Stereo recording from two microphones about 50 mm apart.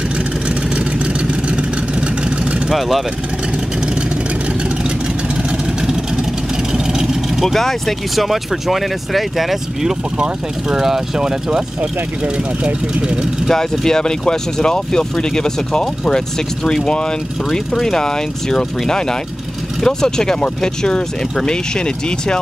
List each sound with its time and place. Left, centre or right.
1.2 s vehicle: centre
6.7 s vehicle: centre
7.4 s speech: centre
10.1 s speech: centre
13.5 s speech: centre